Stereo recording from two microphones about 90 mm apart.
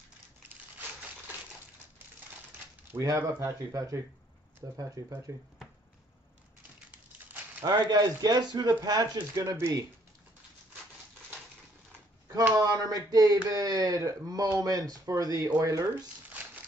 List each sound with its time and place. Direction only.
3.2 s speech: 30° right (ahead or behind)
7.6 s speech: 50° right (ahead or behind)
9.3 s speech: 35° right (ahead or behind)
12.3 s speech: 45° right (ahead or behind)